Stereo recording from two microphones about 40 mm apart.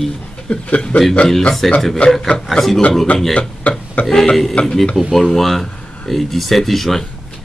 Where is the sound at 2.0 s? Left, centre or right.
Left.